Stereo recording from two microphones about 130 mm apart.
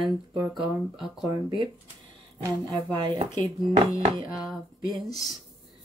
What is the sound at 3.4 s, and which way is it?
Speech, 35° right (ahead or behind).